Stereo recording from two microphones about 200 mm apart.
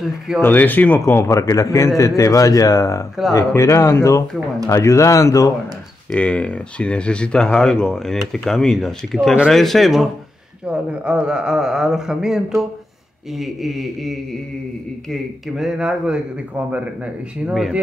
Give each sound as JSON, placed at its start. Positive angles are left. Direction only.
{"t": 0.4, "sound": "a man's voice", "side_deg": 10}
{"t": 6.1, "sound": "a man's voice", "side_deg": 5}